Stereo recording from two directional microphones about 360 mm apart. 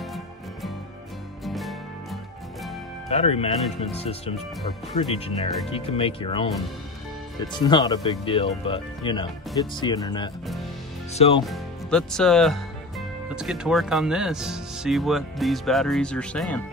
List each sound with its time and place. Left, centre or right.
1.4 s music: centre
3.1 s speech: centre
11.4 s speech: centre